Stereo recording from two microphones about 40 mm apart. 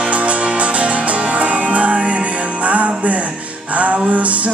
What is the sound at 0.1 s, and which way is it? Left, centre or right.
Music, right.